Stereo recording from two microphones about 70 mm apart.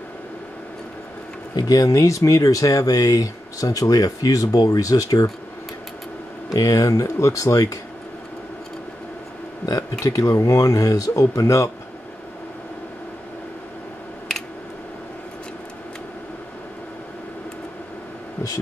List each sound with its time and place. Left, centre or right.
1.6 s speech: left
1.9 s speech: left
6.5 s speech: left
9.7 s speech: left